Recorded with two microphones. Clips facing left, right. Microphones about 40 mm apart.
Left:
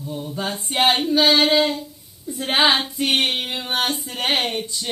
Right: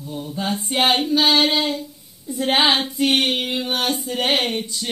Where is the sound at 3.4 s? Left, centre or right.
Centre.